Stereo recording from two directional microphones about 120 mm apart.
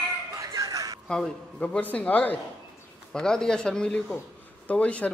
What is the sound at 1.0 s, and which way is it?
Speech, 5° left (ahead or behind).